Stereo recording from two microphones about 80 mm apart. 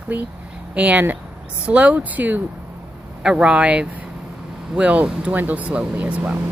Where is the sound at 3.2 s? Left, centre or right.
Centre.